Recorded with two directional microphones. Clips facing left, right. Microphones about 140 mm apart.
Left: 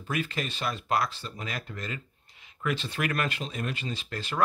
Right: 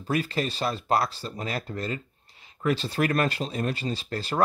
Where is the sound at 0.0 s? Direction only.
35° right (ahead or behind).